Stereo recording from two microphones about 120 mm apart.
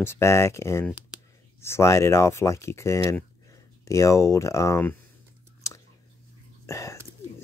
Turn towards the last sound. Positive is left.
turn(degrees=25)  # may be behind; listen again after turning